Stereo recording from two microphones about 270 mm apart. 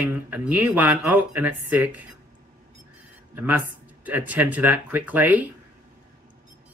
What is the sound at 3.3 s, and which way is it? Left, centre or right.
Speech, centre.